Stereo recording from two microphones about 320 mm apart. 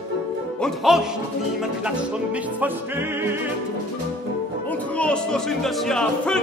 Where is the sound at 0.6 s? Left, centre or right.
Centre.